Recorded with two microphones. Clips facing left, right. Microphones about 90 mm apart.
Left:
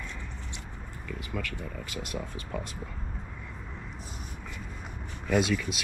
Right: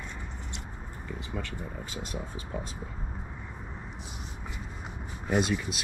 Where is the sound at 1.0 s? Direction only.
25° right (ahead or behind).